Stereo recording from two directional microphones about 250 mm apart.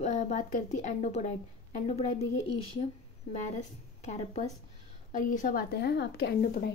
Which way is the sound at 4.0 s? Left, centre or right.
Left.